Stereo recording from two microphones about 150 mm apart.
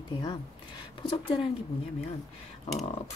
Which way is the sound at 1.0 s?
30° left (ahead or behind).